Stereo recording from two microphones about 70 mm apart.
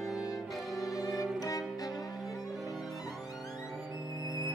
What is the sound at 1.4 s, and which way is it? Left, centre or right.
Music, left.